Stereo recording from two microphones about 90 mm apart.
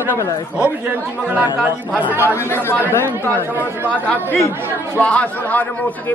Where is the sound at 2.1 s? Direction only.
20° right (ahead or behind).